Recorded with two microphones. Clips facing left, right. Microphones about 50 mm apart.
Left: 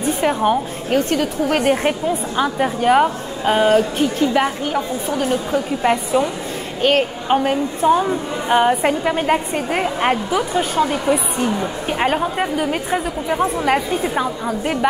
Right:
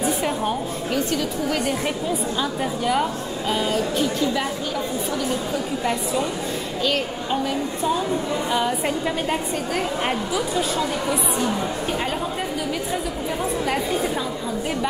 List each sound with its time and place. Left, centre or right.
0.2 s a woman's voice: left